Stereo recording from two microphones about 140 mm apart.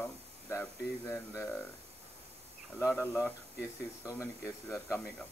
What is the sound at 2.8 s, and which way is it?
Speech, 15° left (ahead or behind).